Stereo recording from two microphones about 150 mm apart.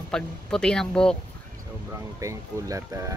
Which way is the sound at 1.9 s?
20° right (ahead or behind).